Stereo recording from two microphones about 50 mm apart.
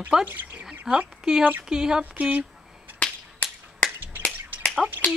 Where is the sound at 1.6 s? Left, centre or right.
Centre.